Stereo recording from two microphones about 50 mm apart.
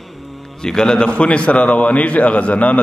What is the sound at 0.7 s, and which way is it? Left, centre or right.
A man's voice, centre.